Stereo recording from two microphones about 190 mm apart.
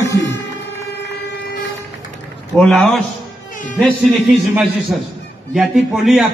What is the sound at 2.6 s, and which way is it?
A man's voice, centre (ahead or behind).